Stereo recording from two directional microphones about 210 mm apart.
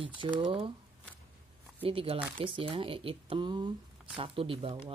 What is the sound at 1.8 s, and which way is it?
Speech, 25° right (ahead or behind).